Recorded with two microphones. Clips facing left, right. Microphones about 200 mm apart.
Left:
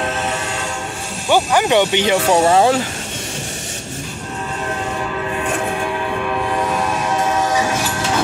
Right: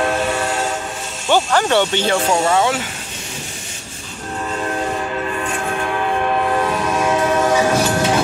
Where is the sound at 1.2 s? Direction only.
15° left (ahead or behind).